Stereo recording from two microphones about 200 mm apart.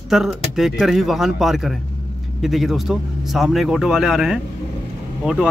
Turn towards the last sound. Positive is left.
turn(degrees=-5)  # may be behind; listen again after turning